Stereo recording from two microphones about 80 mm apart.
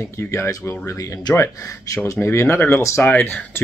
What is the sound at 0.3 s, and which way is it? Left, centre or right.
Speech, left.